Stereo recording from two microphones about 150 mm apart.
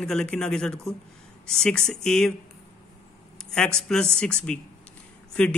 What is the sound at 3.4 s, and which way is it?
A man's voice, 5° left (ahead or behind).